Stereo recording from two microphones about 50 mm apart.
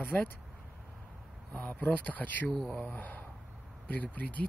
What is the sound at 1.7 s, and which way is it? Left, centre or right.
Speech, left.